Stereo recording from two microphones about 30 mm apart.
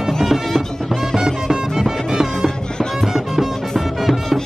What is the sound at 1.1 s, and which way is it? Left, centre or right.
Music, right.